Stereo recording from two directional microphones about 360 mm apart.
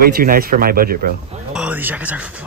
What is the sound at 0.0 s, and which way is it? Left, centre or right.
Speech, right.